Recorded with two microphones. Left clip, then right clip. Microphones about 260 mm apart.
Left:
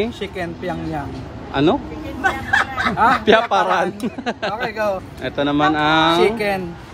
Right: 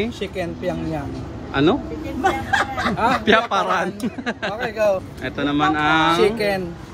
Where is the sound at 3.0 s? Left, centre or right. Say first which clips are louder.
Left 3 dB; centre.